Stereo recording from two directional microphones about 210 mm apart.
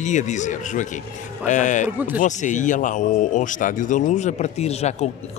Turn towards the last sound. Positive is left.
turn(degrees=30)  # may be behind; listen again after turning